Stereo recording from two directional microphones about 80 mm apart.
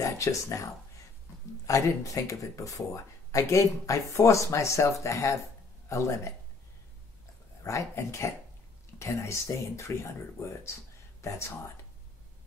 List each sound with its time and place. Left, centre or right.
0.0 s speech: left
1.7 s speech: left
7.6 s speech: left